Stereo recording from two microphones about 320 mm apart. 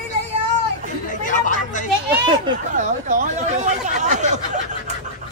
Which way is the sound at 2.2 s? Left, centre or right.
Centre.